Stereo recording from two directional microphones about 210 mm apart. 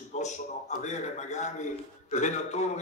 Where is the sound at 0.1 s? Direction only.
35° left (ahead or behind).